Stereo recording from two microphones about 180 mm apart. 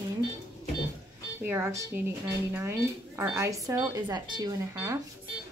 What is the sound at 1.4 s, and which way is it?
Speech, 15° right (ahead or behind).